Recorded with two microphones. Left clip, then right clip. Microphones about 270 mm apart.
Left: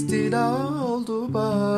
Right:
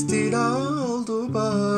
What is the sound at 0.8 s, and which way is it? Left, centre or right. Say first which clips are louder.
Music: even; left.